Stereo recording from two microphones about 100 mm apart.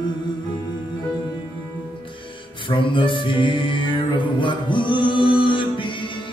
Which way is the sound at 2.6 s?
55° left (ahead or behind).